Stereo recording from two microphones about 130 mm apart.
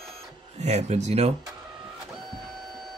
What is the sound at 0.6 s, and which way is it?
Speech, 60° right (ahead or behind).